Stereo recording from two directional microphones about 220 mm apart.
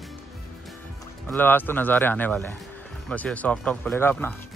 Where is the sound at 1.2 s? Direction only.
10° left (ahead or behind).